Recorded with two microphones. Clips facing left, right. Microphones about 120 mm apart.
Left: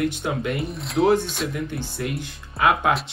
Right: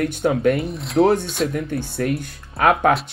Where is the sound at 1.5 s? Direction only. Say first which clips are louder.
Right 4 dB; 55° right (ahead or behind).